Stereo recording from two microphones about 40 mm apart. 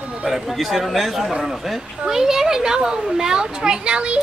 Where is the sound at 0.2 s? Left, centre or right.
Centre.